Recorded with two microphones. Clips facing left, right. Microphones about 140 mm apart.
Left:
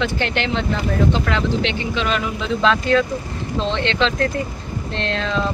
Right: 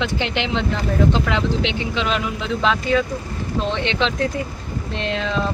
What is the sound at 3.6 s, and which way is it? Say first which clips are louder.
Speech: left 1 dB; 10° right (ahead or behind).